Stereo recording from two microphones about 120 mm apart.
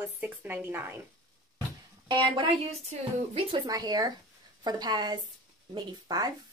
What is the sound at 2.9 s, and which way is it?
Speech, 70° right (ahead or behind).